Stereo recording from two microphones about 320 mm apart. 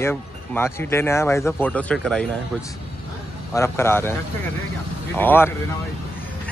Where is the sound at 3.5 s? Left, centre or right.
Centre.